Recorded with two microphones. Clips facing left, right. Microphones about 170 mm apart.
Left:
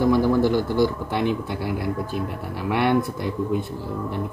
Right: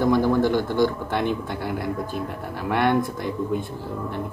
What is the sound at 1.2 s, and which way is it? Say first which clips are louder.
Speech: left 2 dB; 50° right (ahead or behind).